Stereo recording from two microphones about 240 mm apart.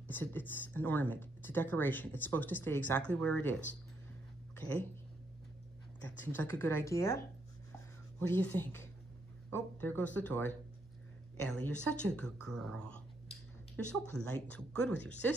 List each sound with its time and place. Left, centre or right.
0.1 s speech: centre
6.0 s speech: centre
8.2 s speech: centre